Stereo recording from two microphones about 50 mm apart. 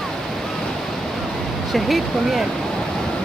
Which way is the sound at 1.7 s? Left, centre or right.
Centre.